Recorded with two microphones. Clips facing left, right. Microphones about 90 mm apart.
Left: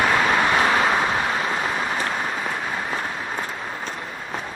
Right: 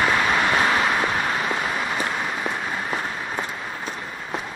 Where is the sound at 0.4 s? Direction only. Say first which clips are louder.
Left 1 dB; 25° left (ahead or behind).